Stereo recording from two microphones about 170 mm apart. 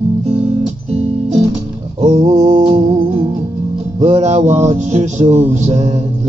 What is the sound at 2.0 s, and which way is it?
Music, 40° right (ahead or behind).